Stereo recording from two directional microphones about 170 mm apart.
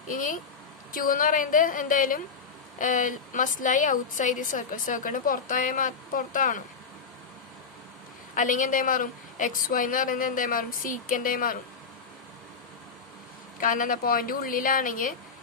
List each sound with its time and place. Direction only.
0.1 s a woman's voice: 55° left (ahead or behind)
8.4 s a woman's voice: 50° left (ahead or behind)
13.6 s a woman's voice: 50° left (ahead or behind)